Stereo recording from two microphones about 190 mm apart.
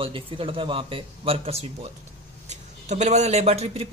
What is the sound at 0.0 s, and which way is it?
Speech, 30° right (ahead or behind).